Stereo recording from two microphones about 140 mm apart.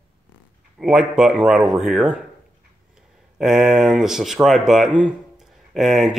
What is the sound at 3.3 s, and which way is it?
Speech, 5° right (ahead or behind).